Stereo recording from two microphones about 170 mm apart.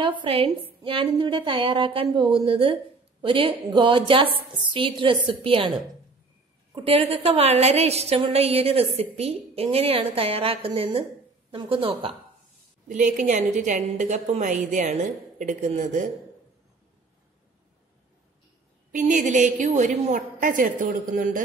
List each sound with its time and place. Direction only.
0.0 s a woman's voice: 30° right (ahead or behind)
6.7 s a woman's voice: 35° right (ahead or behind)
12.8 s a woman's voice: 50° right (ahead or behind)
18.9 s a woman's voice: 50° right (ahead or behind)